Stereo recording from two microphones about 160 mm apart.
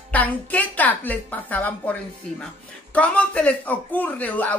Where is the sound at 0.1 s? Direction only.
10° left (ahead or behind).